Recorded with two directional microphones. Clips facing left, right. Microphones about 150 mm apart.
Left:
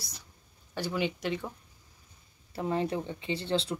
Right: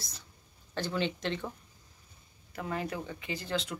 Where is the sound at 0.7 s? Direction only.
10° left (ahead or behind).